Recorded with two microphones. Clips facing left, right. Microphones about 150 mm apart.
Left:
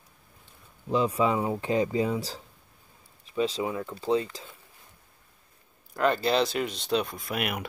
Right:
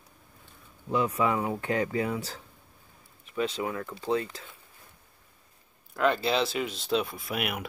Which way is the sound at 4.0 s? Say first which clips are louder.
Left 3 dB; 30° left (ahead or behind).